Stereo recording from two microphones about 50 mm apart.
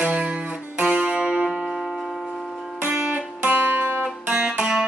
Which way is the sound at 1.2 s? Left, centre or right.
Centre.